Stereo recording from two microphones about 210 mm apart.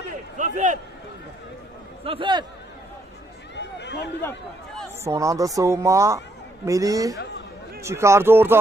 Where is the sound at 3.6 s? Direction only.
55° left (ahead or behind).